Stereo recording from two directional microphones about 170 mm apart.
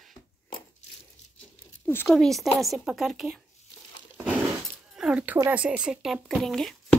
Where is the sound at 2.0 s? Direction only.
Centre (ahead or behind).